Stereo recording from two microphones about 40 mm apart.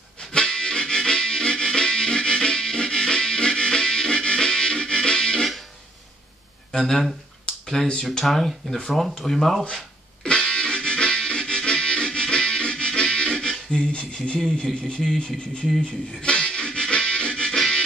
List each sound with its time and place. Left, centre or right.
0.2 s harmonica: centre
7.6 s speech: centre
9.7 s music: centre
14.5 s speech: left
16.2 s music: left